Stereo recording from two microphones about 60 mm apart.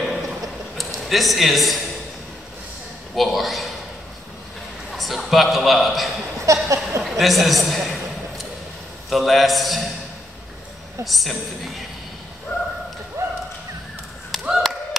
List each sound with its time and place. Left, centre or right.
0.0 s a sound: centre
3.2 s a man's voice: centre
4.9 s a man's voice: centre
6.4 s a sound: right
7.0 s a sound: centre
9.1 s a man's voice: centre
11.1 s a man's voice: centre
13.2 s whip: right
14.5 s clapping: centre